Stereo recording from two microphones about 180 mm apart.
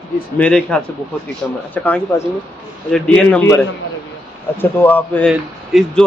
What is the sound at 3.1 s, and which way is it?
Speech, 10° left (ahead or behind).